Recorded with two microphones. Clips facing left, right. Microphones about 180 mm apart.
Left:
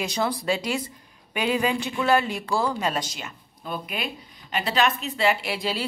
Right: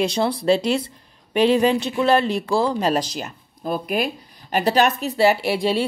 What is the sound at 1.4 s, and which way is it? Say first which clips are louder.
A woman's voice: right 6 dB; 30° right (ahead or behind).